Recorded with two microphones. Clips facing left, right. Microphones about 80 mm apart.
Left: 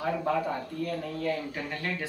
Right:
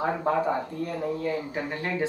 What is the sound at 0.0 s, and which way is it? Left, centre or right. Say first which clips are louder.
Speech: right 3 dB; right.